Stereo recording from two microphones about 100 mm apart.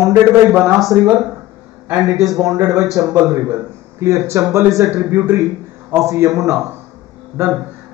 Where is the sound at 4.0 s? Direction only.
30° right (ahead or behind).